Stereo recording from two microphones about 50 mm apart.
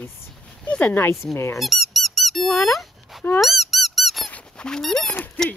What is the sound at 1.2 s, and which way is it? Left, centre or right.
Speech, left.